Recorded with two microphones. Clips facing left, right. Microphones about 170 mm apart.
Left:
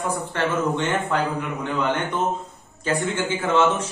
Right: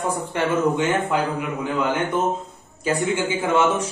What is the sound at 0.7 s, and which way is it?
A man's voice, 5° right (ahead or behind).